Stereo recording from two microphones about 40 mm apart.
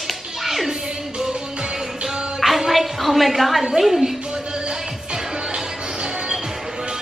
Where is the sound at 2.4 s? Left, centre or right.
Centre.